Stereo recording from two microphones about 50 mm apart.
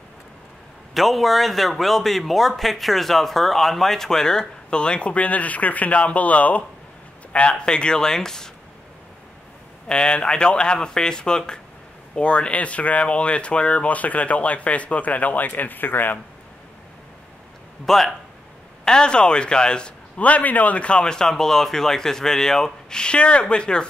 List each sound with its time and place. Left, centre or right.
0.9 s speech: centre
9.8 s speech: centre; by 16.2 s left
17.8 s speech: centre
18.9 s speech: centre
20.2 s speech: left
21.0 s speech: centre